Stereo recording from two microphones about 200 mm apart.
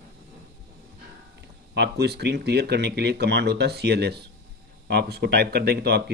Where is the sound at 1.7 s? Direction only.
55° right (ahead or behind).